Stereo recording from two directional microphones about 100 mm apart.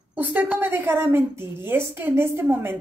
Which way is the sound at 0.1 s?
15° right (ahead or behind).